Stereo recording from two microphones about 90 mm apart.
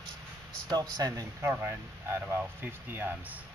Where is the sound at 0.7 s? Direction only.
45° right (ahead or behind).